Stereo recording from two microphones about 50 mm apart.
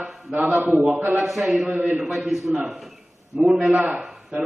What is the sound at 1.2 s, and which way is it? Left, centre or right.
A man's voice, centre.